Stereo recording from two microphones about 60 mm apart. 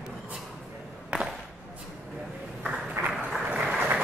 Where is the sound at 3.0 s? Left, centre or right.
Right.